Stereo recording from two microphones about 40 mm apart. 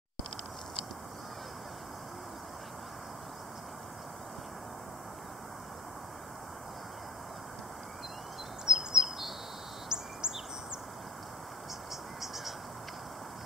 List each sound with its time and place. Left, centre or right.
8.6 s bird vocalization: centre
9.8 s bird: centre